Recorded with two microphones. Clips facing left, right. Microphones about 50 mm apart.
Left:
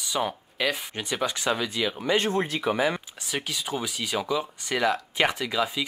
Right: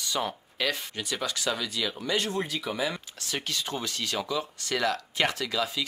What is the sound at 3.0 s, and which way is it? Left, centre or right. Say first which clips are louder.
Speech: left 2 dB; centre.